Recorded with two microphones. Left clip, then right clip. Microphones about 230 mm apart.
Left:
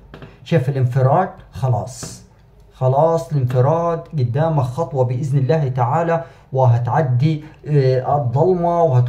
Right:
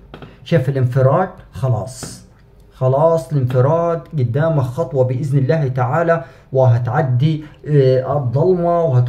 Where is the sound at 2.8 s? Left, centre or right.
Centre.